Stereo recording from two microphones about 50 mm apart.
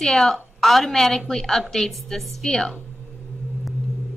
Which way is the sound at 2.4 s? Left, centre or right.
Centre.